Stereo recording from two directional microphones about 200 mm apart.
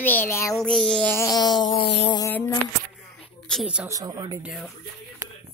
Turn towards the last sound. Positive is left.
turn(degrees=-5)  # may be behind; listen again after turning